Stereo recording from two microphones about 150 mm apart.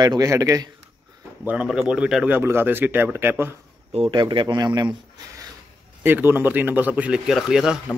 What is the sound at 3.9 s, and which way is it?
Speech, 35° right (ahead or behind).